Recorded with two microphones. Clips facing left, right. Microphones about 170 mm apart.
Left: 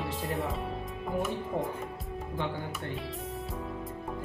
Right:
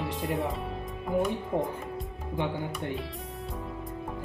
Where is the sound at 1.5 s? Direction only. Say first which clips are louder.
Right 4 dB; 15° right (ahead or behind).